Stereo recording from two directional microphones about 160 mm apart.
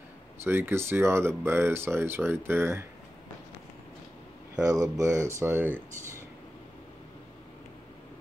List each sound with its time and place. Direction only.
0.4 s speech: 15° right (ahead or behind)
4.6 s speech: 20° right (ahead or behind)